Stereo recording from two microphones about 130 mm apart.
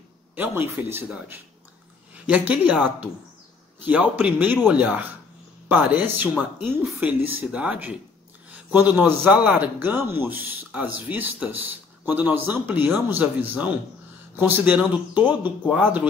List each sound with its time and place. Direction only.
0.4 s a man's voice: 15° right (ahead or behind)